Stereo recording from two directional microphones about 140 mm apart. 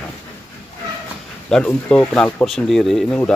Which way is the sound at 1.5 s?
5° left (ahead or behind).